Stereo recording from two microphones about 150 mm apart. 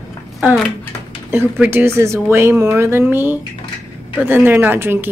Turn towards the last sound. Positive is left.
turn(degrees=-15)  # may be behind; listen again after turning